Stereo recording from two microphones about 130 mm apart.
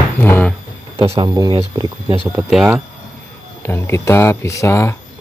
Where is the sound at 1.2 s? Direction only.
35° right (ahead or behind).